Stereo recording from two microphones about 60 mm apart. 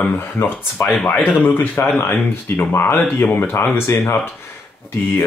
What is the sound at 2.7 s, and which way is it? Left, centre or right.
Speech, left.